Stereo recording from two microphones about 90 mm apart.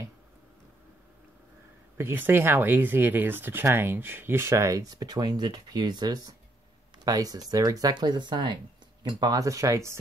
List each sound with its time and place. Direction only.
2.0 s speech: 25° right (ahead or behind); by 8.5 s 60° right (ahead or behind)
9.2 s speech: 45° right (ahead or behind)